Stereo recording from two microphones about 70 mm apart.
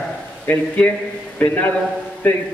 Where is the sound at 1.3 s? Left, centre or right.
Left.